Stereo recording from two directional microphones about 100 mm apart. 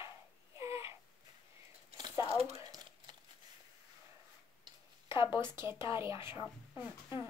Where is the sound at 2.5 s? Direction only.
40° right (ahead or behind).